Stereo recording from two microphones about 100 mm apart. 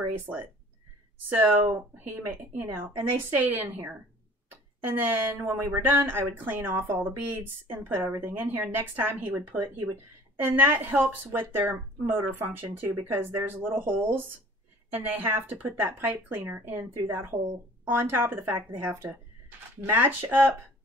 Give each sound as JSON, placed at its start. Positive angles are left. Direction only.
{"t": 0.1, "sound": "speech", "side_deg": -20}